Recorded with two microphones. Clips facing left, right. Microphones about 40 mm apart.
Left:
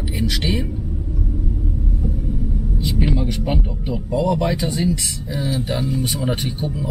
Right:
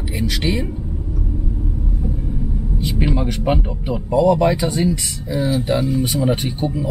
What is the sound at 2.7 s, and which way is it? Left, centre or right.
Vehicle, centre.